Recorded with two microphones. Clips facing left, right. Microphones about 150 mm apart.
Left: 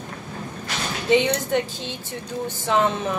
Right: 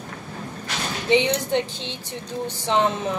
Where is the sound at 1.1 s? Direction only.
20° right (ahead or behind).